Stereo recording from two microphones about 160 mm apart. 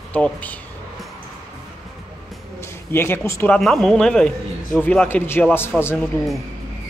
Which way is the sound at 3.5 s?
Centre (ahead or behind).